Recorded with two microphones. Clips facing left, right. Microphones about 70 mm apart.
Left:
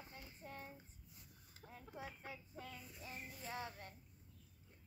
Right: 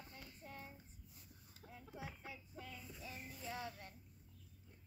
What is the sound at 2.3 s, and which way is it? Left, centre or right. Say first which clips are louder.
A child's voice: left 1 dB; left.